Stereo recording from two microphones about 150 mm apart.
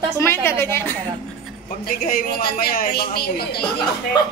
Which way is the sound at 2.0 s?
75° left (ahead or behind).